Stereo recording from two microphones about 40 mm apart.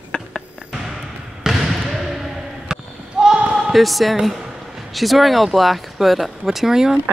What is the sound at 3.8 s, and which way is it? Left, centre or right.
A woman's voice, centre.